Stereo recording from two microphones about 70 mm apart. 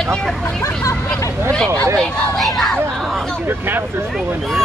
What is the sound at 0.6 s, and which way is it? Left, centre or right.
Speech, left.